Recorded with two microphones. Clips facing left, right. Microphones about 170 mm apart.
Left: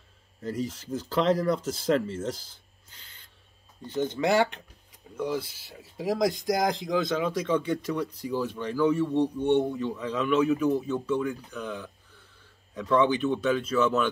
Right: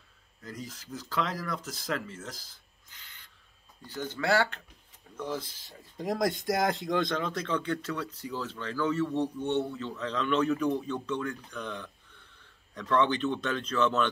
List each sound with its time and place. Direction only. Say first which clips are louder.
0.4 s speech: left 10 dB; 30° left (ahead or behind); by 14.0 s 10° left (ahead or behind)